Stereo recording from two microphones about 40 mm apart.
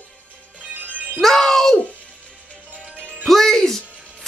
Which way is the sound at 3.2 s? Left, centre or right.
Centre.